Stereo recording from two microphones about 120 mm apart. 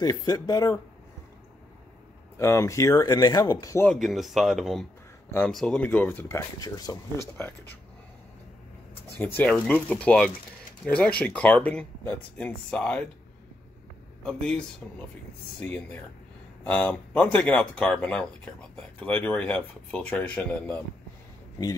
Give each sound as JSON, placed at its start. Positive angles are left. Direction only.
{"t": 0.0, "sound": "speech", "side_deg": 35}
{"t": 2.3, "sound": "speech", "side_deg": 20}
{"t": 3.9, "sound": "speech", "side_deg": 0}
{"t": 9.2, "sound": "speech", "side_deg": 15}
{"t": 14.2, "sound": "speech", "side_deg": 10}